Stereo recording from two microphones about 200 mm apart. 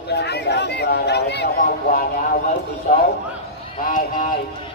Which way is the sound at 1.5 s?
45° left (ahead or behind).